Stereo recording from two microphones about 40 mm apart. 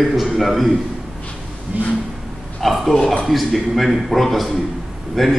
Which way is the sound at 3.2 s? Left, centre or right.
Centre.